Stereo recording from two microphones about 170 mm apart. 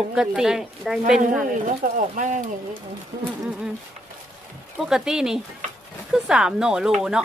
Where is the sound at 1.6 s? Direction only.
50° right (ahead or behind).